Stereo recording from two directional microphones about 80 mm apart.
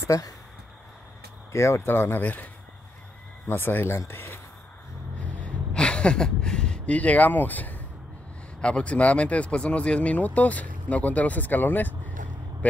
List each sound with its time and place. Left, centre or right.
1.5 s speech: left
5.2 s a sound: centre
8.5 s speech: centre